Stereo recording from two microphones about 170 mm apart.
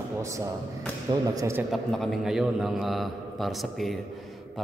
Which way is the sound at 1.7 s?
Centre (ahead or behind).